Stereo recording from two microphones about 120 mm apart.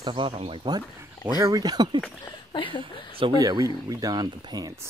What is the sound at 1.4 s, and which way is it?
Speech, 30° right (ahead or behind).